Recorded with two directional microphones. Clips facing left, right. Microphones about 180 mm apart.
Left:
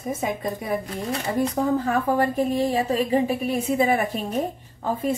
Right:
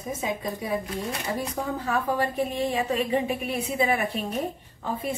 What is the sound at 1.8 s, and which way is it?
A woman's voice, 50° left (ahead or behind).